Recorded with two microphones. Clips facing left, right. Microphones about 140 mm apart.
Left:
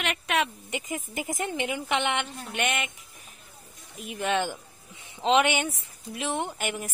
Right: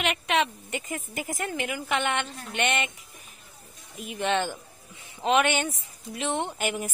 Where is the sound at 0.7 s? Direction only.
15° left (ahead or behind).